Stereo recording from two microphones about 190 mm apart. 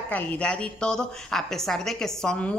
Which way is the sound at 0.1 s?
5° left (ahead or behind).